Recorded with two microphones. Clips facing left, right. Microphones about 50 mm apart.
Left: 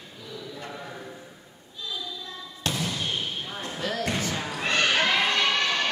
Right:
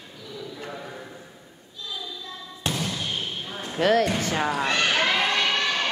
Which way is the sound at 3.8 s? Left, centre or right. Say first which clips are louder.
Right 11 dB; right.